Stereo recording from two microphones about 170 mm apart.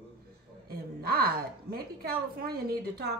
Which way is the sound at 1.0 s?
65° right (ahead or behind).